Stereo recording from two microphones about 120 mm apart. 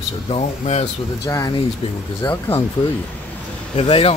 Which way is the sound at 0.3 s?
60° left (ahead or behind).